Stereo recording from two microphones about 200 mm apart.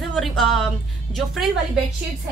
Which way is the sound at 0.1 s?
Centre (ahead or behind).